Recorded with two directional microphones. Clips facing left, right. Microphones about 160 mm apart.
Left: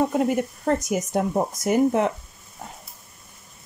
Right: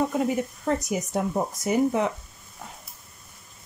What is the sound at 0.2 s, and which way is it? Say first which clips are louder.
Speech: left 3 dB; 55° left (ahead or behind).